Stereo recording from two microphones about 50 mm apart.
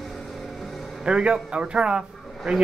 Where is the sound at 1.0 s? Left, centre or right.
Right.